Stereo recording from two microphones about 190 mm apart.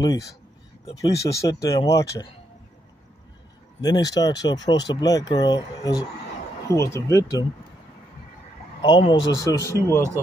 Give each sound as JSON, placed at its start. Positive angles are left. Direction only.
{"t": 0.0, "sound": "speech", "side_deg": 20}
{"t": 3.8, "sound": "speech", "side_deg": 20}
{"t": 8.8, "sound": "speech", "side_deg": 25}